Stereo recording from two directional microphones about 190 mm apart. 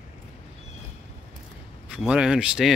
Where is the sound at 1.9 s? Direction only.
5° right (ahead or behind).